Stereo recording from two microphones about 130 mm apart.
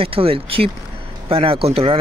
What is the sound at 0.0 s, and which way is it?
Speech, 45° right (ahead or behind).